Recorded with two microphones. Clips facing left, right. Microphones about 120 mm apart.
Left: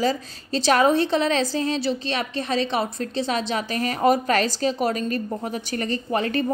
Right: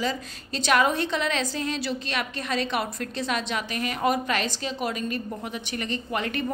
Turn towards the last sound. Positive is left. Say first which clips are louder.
# left 5 dB
turn(degrees=35)  # may be behind; listen again after turning